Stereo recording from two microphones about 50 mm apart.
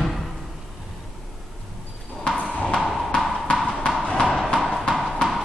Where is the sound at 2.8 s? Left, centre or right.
Centre.